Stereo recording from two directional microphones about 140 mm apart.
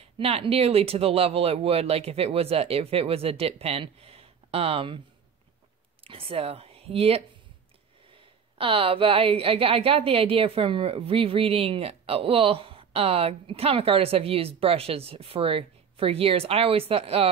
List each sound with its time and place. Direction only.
0.2 s a woman's voice: 45° right (ahead or behind)
6.0 s a woman's voice: 40° right (ahead or behind)